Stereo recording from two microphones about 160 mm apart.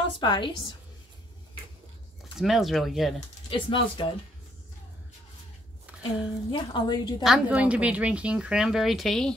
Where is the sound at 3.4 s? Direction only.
35° left (ahead or behind).